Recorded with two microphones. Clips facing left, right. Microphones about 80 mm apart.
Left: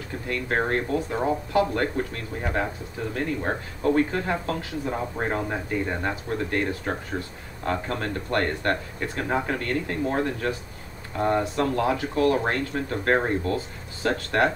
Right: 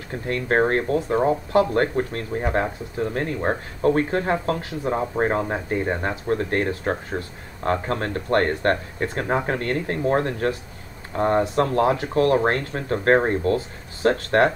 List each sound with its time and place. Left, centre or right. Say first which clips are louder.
0.1 s speech: right 5 dB; right